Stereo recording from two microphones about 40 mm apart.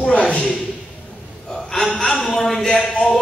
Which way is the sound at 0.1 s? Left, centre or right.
Left.